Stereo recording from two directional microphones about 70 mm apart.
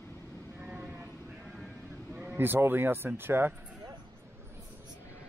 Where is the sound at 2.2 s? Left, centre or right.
Right.